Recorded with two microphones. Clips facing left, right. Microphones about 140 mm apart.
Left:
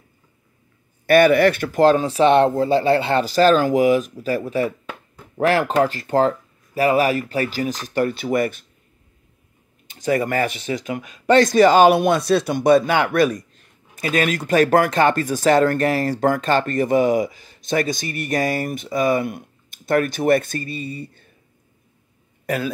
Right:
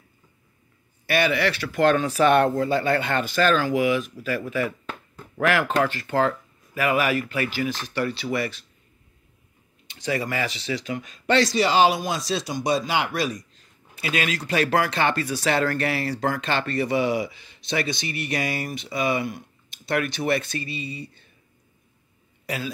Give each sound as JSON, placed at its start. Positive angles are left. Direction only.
{"t": 1.0, "sound": "speech", "side_deg": 50}
{"t": 1.8, "sound": "speech", "side_deg": 30}
{"t": 9.8, "sound": "speech", "side_deg": 45}
{"t": 13.9, "sound": "speech", "side_deg": 45}
{"t": 22.5, "sound": "speech", "side_deg": 50}